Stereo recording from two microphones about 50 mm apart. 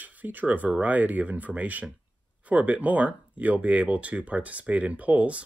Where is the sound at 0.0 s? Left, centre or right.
Right.